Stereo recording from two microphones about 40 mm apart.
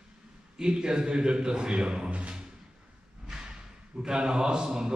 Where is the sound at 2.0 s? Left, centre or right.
Right.